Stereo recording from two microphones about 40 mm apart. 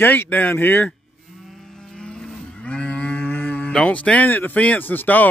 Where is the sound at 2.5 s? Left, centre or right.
Left.